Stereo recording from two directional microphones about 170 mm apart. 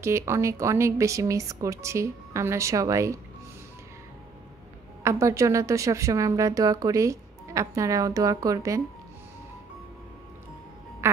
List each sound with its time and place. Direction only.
0.0 s speech: 15° right (ahead or behind)
5.0 s a woman's voice: 15° right (ahead or behind)